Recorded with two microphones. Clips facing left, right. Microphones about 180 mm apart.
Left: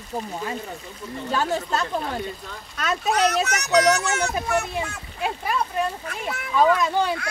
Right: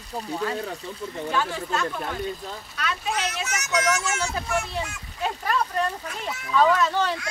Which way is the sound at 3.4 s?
65° left (ahead or behind).